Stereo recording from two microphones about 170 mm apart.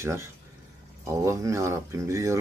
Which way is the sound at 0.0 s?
15° right (ahead or behind).